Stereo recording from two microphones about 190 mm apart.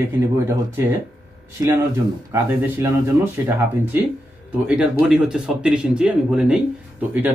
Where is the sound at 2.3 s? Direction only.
15° right (ahead or behind).